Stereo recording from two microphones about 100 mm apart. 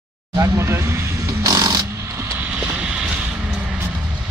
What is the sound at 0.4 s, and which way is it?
Vehicle, 25° right (ahead or behind).